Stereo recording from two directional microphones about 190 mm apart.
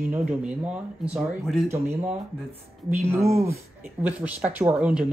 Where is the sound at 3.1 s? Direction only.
15° right (ahead or behind).